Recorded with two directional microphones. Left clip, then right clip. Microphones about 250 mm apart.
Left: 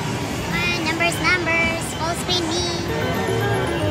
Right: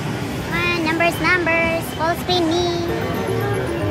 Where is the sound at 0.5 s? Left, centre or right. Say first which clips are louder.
Right 3 dB; centre.